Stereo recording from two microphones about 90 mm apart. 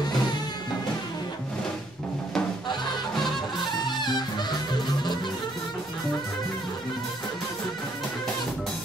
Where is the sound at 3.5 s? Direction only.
55° left (ahead or behind).